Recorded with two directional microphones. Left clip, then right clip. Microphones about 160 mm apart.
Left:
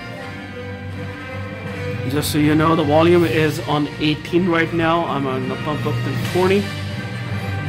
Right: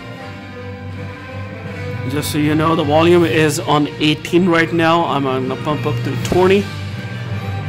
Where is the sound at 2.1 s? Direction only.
5° right (ahead or behind); by 5.9 s 30° right (ahead or behind).